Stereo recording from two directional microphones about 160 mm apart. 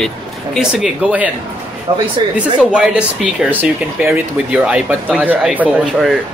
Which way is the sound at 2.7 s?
5° right (ahead or behind).